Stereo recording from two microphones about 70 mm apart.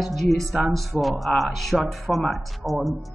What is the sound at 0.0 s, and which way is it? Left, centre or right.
Speech, centre.